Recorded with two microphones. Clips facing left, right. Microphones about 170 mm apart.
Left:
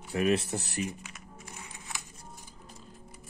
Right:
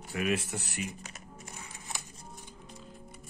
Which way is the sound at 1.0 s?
35° right (ahead or behind).